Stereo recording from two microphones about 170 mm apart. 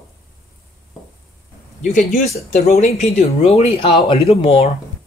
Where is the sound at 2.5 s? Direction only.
45° left (ahead or behind).